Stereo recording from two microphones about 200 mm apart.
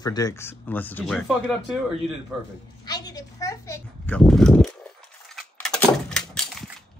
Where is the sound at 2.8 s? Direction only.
20° left (ahead or behind).